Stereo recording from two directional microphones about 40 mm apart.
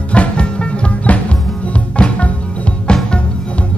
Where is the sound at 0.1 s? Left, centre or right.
Left.